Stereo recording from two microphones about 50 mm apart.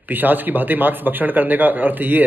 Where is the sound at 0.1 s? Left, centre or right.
Right.